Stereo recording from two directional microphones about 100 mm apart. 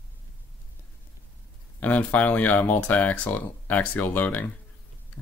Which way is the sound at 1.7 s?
15° left (ahead or behind).